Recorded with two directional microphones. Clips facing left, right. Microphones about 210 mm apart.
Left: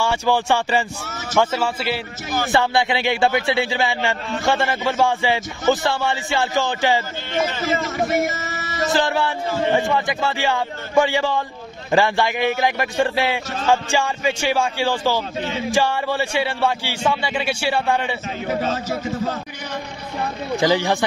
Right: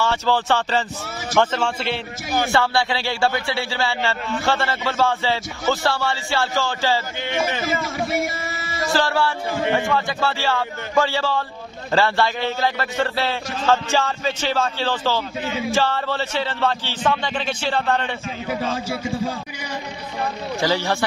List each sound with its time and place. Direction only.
0.0 s a man's voice: 15° left (ahead or behind)
2.5 s a man's voice: 20° left (ahead or behind)
7.2 s a man's voice: 15° right (ahead or behind)
8.8 s speech: 20° left (ahead or behind)
9.5 s a man's voice: 10° right (ahead or behind)
9.8 s a man's voice: 15° left (ahead or behind)
18.5 s a man's voice: 10° right (ahead or behind)
20.5 s a man's voice: 15° left (ahead or behind)